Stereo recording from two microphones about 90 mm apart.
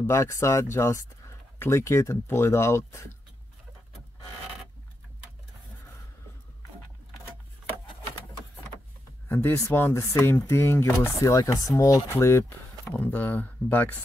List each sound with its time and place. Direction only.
0.1 s speech: 30° left (ahead or behind)
9.3 s speech: 25° left (ahead or behind)
12.9 s speech: 20° left (ahead or behind)